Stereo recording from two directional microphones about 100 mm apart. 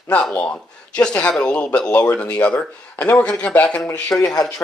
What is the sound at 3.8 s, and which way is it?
Speech, 30° left (ahead or behind).